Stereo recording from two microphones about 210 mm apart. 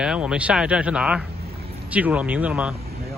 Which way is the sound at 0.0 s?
5° right (ahead or behind).